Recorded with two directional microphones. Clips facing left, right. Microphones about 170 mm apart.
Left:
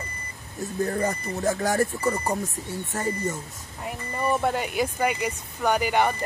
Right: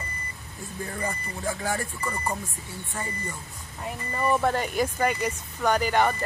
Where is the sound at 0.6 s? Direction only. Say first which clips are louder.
Left 8 dB; 40° left (ahead or behind).